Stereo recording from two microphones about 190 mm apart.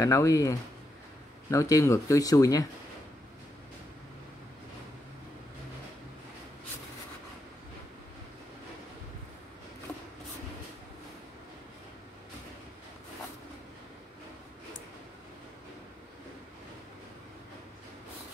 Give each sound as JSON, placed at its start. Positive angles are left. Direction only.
{"t": 0.0, "sound": "speech", "side_deg": 15}